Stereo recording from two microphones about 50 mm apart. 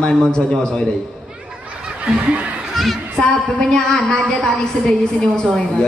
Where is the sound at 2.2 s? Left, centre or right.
Right.